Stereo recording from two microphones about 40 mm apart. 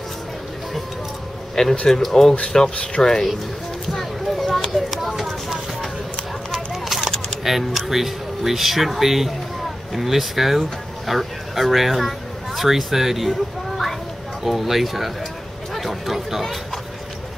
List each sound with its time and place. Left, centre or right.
1.5 s speech: centre
2.4 s speech: centre
3.9 s a sound: centre
7.4 s speech: centre
15.7 s chatter: centre